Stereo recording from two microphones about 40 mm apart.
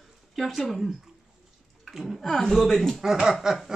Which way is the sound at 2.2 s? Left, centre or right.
Centre.